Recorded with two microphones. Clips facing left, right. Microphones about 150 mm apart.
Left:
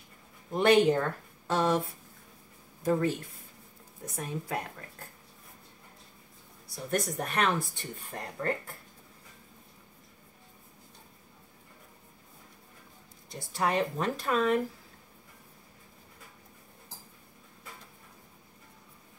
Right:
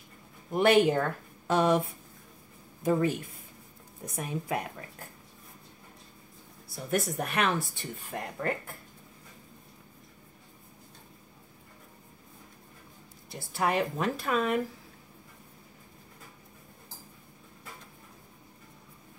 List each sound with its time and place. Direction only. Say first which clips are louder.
0.5 s speech: even; 10° right (ahead or behind)
2.8 s speech: right 1 dB; 15° right (ahead or behind)
4.2 s speech: right 2 dB; 15° right (ahead or behind)
6.7 s speech: right 1 dB; 5° right (ahead or behind)
13.3 s speech: right 1 dB; 5° right (ahead or behind)